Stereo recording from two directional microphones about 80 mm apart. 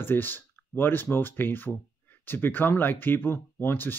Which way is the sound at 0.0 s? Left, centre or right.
Left.